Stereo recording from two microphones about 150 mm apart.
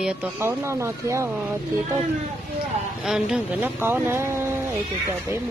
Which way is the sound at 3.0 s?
5° right (ahead or behind).